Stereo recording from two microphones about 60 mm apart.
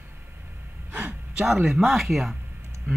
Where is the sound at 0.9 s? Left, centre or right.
Centre.